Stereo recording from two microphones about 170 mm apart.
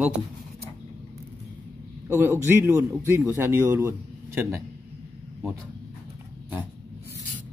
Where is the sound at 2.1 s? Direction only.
15° right (ahead or behind).